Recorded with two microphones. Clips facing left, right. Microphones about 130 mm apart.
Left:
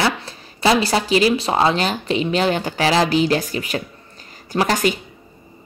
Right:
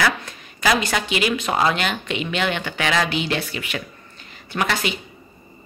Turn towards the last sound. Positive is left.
turn(degrees=40)  # may be behind; listen again after turning